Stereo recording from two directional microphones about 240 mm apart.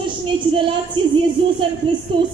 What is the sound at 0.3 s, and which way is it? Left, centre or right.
A woman's voice, centre.